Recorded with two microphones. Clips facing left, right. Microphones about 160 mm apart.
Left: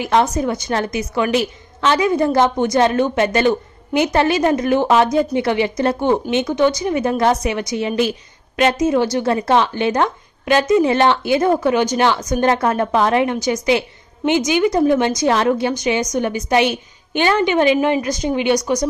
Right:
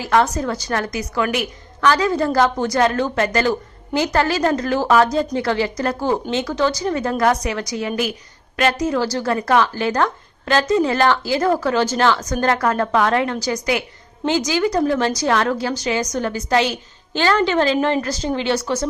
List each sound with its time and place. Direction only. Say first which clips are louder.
0.0 s a woman's voice: left 1 dB; 20° left (ahead or behind)